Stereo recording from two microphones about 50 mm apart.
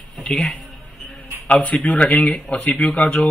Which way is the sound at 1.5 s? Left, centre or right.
Left.